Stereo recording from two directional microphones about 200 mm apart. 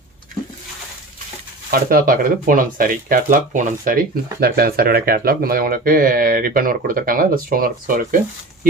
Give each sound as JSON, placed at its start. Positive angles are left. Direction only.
{"t": 1.7, "sound": "speech", "side_deg": -45}